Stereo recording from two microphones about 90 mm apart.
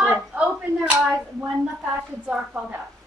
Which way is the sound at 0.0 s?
15° right (ahead or behind).